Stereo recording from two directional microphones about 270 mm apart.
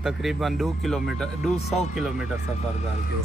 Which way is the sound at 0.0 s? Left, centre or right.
Centre.